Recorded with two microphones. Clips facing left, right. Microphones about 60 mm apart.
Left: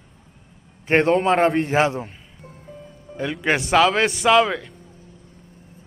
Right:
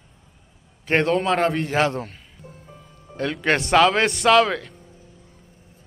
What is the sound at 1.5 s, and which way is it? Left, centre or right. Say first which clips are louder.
Speech: left 4 dB; centre.